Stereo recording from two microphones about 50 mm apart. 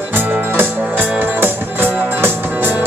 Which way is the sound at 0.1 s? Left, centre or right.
Right.